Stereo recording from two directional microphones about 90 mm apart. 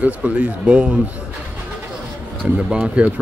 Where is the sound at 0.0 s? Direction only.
15° right (ahead or behind).